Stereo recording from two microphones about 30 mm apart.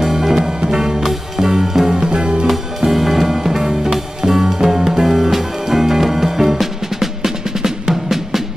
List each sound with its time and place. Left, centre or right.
0.0 s music: centre
2.0 s music: right
2.8 s music: centre